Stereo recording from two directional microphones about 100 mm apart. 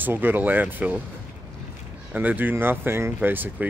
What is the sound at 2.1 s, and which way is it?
Speech, 20° right (ahead or behind).